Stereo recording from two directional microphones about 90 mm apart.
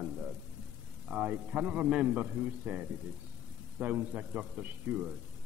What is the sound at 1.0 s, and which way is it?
A man's voice, 15° right (ahead or behind).